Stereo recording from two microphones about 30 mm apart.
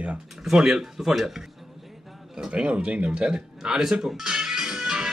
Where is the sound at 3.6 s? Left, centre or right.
Right.